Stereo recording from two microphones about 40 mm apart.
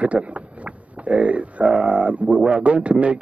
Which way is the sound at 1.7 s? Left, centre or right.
Right.